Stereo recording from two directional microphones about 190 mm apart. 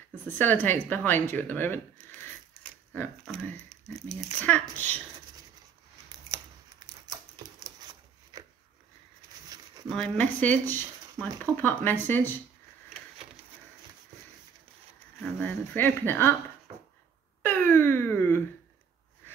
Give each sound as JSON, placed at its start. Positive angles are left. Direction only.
{"t": 0.4, "sound": "speech", "side_deg": 10}
{"t": 6.3, "sound": "scissors", "side_deg": -20}
{"t": 8.3, "sound": "a sound", "side_deg": -20}
{"t": 9.8, "sound": "speech", "side_deg": 5}
{"t": 11.6, "sound": "speech", "side_deg": 10}
{"t": 15.3, "sound": "speech", "side_deg": 10}
{"t": 17.4, "sound": "wail", "side_deg": 10}